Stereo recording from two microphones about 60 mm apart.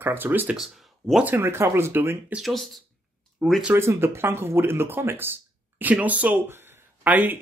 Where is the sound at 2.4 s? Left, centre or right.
Centre.